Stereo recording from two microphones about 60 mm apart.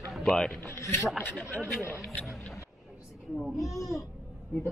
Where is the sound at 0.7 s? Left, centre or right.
Left.